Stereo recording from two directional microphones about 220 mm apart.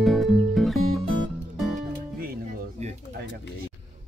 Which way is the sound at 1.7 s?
40° right (ahead or behind).